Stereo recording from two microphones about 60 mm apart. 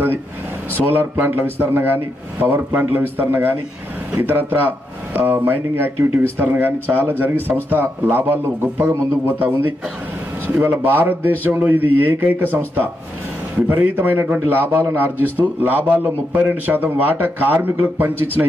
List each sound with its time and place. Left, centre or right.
0.7 s speech: right
10.4 s speech: right